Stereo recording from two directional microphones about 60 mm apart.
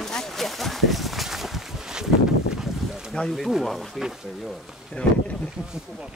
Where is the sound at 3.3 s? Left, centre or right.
Centre.